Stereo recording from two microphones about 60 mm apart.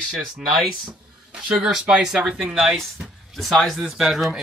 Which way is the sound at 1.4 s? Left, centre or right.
Centre.